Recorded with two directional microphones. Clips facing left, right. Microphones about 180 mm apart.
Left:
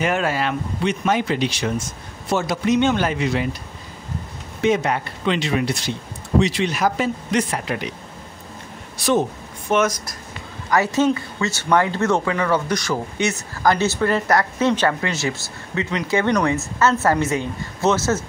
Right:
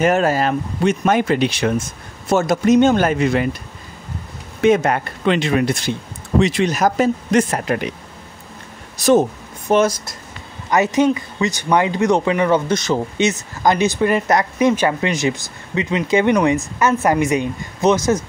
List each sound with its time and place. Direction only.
0.0 s speech: 40° right (ahead or behind)
4.6 s speech: 55° right (ahead or behind)
8.9 s speech: 40° right (ahead or behind)
9.7 s speech: 30° right (ahead or behind)
10.7 s speech: 20° right (ahead or behind)